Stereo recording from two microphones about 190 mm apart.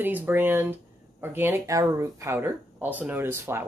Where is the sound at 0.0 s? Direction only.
10° right (ahead or behind).